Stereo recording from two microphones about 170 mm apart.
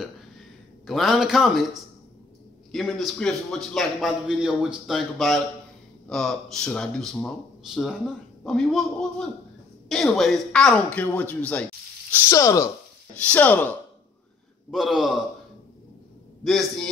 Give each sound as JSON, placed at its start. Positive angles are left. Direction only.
{"t": 0.8, "sound": "a man's voice", "side_deg": 0}
{"t": 12.3, "sound": "speech", "side_deg": 20}
{"t": 14.7, "sound": "a man's voice", "side_deg": 0}
{"t": 16.4, "sound": "a man's voice", "side_deg": 0}